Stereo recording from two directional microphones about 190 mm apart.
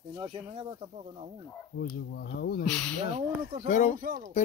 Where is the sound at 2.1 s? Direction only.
55° left (ahead or behind).